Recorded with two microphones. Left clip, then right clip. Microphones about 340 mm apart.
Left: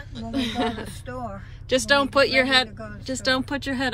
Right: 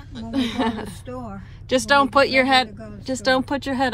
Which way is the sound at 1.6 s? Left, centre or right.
Centre.